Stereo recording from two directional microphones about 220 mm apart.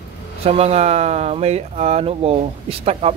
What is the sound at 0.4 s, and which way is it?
Speech, 25° right (ahead or behind).